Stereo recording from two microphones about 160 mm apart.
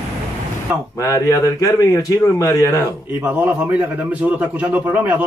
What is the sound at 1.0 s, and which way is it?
A man's voice, 20° left (ahead or behind).